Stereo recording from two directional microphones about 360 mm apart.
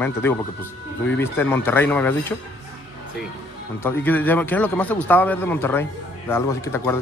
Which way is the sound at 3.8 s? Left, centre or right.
Centre.